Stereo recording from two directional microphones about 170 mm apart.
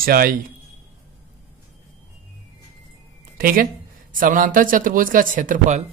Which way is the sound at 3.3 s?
60° right (ahead or behind).